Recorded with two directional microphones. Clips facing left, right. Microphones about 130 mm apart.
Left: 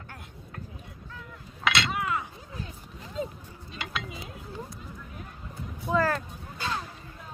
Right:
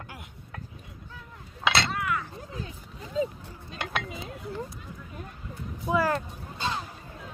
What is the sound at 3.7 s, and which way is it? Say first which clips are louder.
Dishes: right 3 dB; 55° right (ahead or behind).